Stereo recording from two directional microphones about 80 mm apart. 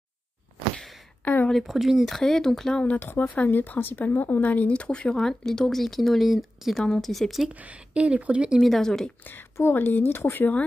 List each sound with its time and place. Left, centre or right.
0.7 s a sound: centre
1.2 s a sound: left
1.5 s speech: centre
2.8 s speech: left; by 7.5 s centre
7.5 s speech: centre
8.5 s speech: centre
9.2 s speech: left